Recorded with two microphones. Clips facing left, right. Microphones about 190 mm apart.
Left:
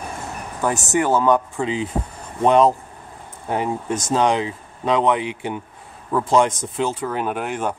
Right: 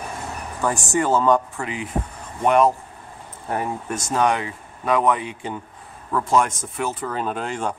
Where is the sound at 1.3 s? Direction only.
20° left (ahead or behind).